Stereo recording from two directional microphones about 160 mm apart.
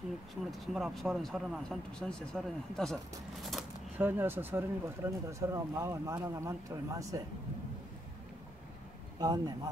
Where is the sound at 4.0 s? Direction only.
10° right (ahead or behind).